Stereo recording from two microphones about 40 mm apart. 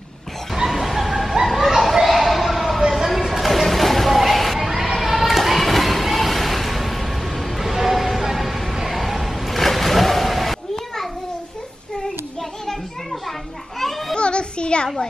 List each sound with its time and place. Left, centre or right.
0.7 s bow-wow: centre
1.5 s children playing: centre
2.9 s a sound: centre
13.7 s children playing: centre
14.1 s children playing: left